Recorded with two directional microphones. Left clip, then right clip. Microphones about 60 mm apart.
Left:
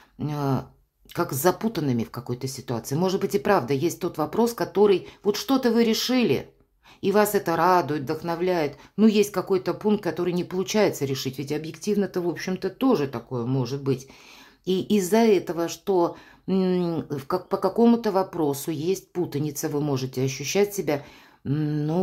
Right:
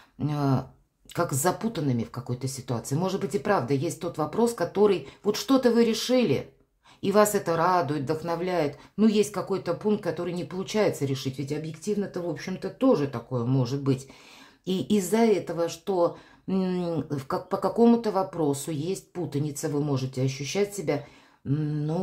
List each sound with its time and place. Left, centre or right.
0.2 s speech: centre
1.2 s speech: left
1.6 s speech: left
4.7 s speech: left
5.6 s speech: left
7.0 s speech: left
7.4 s speech: left
8.0 s speech: left
13.3 s speech: centre
15.0 s speech: left
17.2 s speech: centre
17.6 s speech: left